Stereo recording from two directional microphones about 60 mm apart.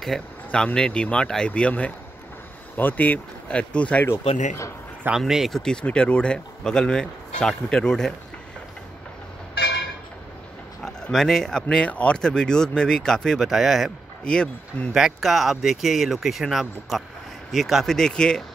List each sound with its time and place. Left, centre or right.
0.7 s speech: centre
2.8 s speech: left
4.0 s speech: left
5.2 s speech: centre
5.6 s speech: centre
10.8 s a sound: centre
11.7 s speech: left
13.5 s speech: centre
14.2 s speech: centre
15.0 s speech: centre
17.9 s speech: centre